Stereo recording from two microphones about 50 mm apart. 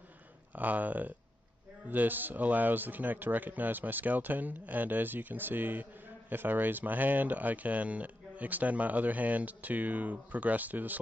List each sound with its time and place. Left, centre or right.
0.6 s a man's voice: right